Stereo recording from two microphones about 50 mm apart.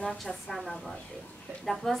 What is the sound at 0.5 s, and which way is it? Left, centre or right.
A woman's voice, centre.